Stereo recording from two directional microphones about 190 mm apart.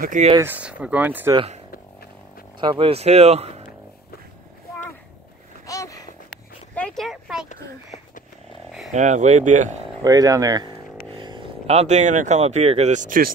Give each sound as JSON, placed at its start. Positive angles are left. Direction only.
{"t": 0.0, "sound": "speech", "side_deg": -40}
{"t": 0.4, "sound": "speech", "side_deg": -10}
{"t": 1.3, "sound": "speech", "side_deg": -30}
{"t": 2.6, "sound": "speech", "side_deg": -25}
{"t": 5.7, "sound": "a sound", "side_deg": 15}
{"t": 6.7, "sound": "a sound", "side_deg": 5}
{"t": 8.9, "sound": "speech", "side_deg": -40}
{"t": 10.0, "sound": "speech", "side_deg": -20}